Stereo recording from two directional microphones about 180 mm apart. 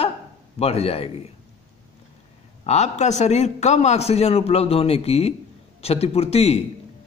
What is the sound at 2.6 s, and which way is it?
A man's voice, 40° left (ahead or behind).